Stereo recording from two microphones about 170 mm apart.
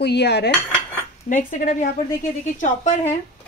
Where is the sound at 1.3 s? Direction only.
50° left (ahead or behind).